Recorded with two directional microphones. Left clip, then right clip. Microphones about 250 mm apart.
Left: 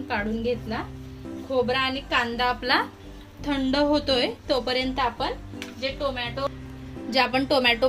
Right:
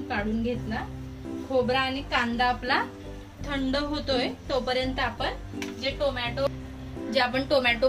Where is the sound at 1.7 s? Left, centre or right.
Left.